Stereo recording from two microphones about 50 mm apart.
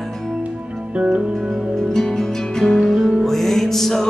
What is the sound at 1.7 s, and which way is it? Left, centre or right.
Music, centre.